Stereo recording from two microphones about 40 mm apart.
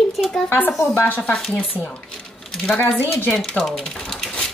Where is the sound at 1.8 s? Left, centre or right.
Right.